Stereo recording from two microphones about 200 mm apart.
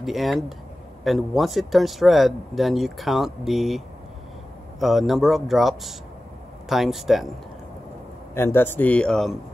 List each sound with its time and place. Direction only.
0.0 s speech: centre (ahead or behind)
8.4 s speech: 10° left (ahead or behind)